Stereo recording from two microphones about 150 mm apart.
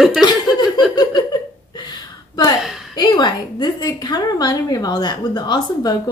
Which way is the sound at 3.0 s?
30° left (ahead or behind).